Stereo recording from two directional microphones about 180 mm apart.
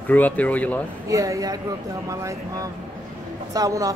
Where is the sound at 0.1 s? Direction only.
10° left (ahead or behind).